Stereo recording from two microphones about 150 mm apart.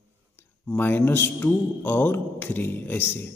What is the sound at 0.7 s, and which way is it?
A man's voice, 15° left (ahead or behind).